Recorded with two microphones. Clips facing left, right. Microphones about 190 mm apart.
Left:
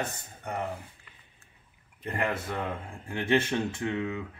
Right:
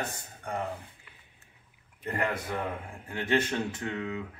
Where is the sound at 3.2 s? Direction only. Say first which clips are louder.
Left 2 dB; 25° left (ahead or behind).